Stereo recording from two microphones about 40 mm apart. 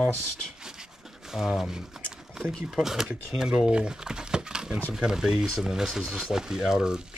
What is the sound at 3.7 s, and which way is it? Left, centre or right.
Crumpling, centre.